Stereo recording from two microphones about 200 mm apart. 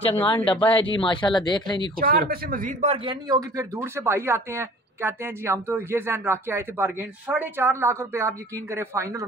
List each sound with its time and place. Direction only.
0.2 s speech: 25° left (ahead or behind)
2.0 s speech: 45° right (ahead or behind); by 9.2 s 15° right (ahead or behind)